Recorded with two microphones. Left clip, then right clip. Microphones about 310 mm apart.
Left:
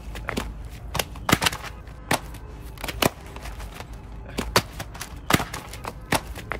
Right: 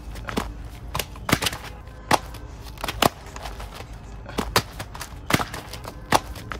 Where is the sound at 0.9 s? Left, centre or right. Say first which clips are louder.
Left 1 dB; centre.